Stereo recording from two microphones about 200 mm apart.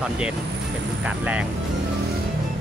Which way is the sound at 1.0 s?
5° right (ahead or behind).